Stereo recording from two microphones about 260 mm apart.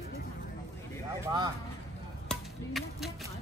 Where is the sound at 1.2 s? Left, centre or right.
Centre.